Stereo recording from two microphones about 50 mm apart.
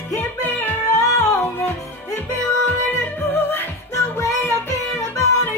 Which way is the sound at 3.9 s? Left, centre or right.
Left.